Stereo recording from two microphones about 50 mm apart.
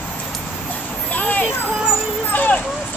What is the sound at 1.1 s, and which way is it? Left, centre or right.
Vehicle, left.